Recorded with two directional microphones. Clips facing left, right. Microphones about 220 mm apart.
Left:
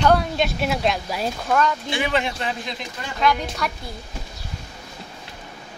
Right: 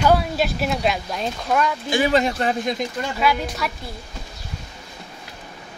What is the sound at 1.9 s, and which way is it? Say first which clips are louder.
Speech: right 5 dB; 40° right (ahead or behind).